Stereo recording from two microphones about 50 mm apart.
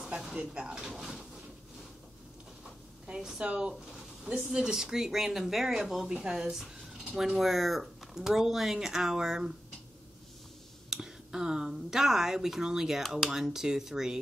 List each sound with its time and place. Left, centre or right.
0.3 s speech: right
3.3 s speech: centre
10.9 s speech: centre